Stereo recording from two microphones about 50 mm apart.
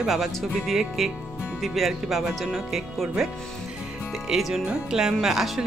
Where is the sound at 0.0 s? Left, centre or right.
Centre.